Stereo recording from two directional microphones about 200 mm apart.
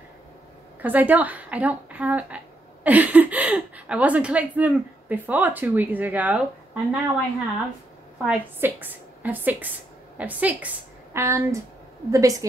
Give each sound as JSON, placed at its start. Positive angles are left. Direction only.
{"t": 0.8, "sound": "a woman's voice", "side_deg": -10}
{"t": 8.2, "sound": "a woman's voice", "side_deg": -10}